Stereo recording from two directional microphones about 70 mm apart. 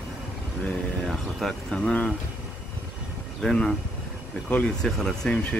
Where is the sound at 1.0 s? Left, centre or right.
Centre.